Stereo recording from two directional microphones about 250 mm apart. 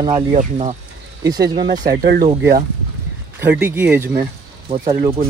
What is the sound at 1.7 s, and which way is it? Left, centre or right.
Speech, right.